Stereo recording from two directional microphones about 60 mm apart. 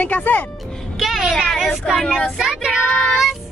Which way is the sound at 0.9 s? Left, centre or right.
Centre.